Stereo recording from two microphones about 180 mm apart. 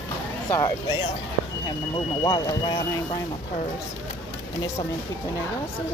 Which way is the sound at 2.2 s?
20° left (ahead or behind).